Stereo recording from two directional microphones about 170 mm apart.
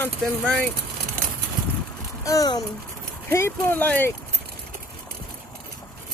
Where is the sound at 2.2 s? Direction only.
20° left (ahead or behind).